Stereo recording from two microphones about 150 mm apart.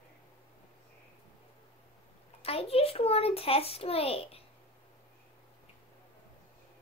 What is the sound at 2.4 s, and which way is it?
A child's voice, 40° left (ahead or behind).